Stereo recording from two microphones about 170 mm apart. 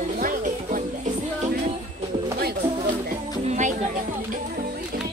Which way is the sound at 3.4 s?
45° right (ahead or behind).